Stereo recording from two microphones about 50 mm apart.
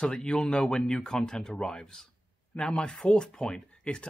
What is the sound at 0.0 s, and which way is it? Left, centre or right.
Speech, centre.